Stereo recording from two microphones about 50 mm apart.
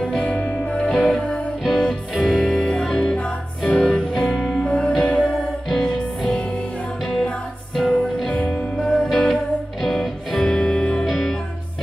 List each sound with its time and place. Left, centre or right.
0.2 s music: left; by 4.6 s centre
4.6 s music: centre
5.7 s music: centre
8.7 s music: centre
9.3 s music: centre
10.5 s music: centre
11.1 s music: centre